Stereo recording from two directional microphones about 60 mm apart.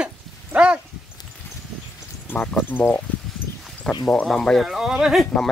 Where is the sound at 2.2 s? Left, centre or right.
Left.